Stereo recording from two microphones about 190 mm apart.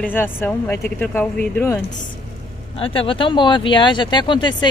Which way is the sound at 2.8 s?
30° left (ahead or behind).